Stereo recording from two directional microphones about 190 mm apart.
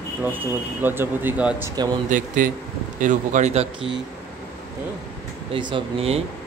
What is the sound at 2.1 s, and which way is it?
A man's voice, 45° right (ahead or behind).